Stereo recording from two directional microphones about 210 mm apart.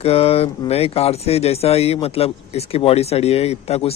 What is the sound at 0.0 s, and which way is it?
Speech, 30° left (ahead or behind).